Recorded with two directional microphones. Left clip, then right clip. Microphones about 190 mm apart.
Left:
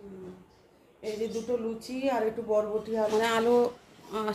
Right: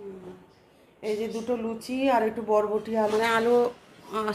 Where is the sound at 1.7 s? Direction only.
40° right (ahead or behind).